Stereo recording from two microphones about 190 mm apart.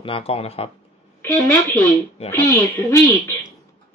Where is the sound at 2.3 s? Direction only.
15° left (ahead or behind).